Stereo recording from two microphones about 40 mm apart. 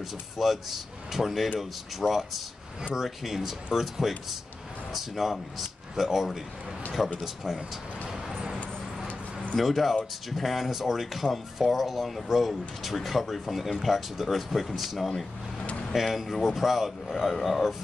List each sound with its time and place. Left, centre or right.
0.4 s speech: centre
8.5 s a sound: left
9.6 s speech: centre